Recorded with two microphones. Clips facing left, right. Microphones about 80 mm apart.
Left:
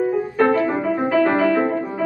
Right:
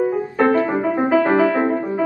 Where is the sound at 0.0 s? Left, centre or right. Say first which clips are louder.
Even; centre.